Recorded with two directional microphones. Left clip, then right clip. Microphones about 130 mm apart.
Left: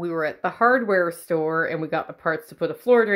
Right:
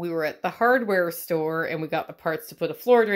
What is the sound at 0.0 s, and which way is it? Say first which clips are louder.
Speech: left 2 dB; 10° right (ahead or behind).